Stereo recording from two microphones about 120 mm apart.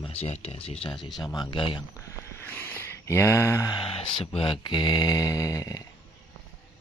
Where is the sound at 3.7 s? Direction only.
45° left (ahead or behind); by 5.9 s 30° left (ahead or behind).